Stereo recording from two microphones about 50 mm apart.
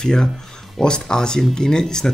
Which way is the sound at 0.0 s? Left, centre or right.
Centre.